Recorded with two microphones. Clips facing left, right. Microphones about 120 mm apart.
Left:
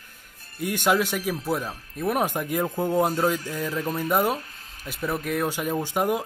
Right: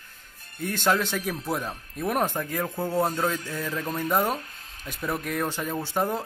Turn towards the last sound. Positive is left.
turn(degrees=15)  # may be behind; listen again after turning